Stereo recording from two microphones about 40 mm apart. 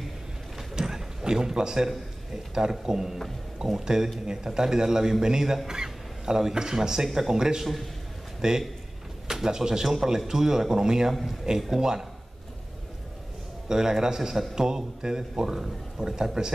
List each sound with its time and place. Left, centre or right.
0.7 s a sound: centre
2.5 s speech: centre
13.7 s speech: centre